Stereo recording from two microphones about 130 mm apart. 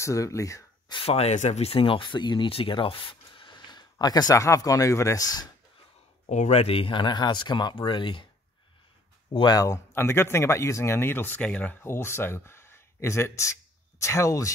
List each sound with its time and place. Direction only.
0.0 s speech: 25° left (ahead or behind)
0.9 s speech: 50° left (ahead or behind); by 5.5 s 30° left (ahead or behind)
6.2 s speech: 65° left (ahead or behind); by 8.3 s 40° left (ahead or behind)
9.3 s speech: 35° left (ahead or behind)